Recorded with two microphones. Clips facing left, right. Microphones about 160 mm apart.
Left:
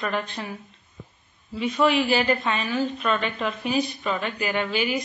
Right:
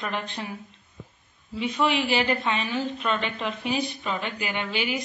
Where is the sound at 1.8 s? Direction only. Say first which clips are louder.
Left 3 dB; 20° right (ahead or behind).